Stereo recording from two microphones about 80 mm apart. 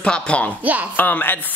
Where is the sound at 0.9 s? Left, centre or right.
Left.